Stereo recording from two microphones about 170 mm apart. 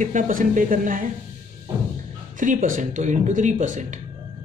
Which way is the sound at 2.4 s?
50° right (ahead or behind).